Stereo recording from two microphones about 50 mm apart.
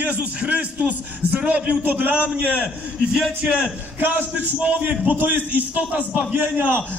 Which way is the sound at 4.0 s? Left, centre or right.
Right.